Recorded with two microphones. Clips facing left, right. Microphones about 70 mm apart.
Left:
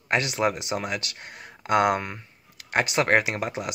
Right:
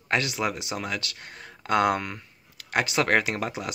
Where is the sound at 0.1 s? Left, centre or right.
Left.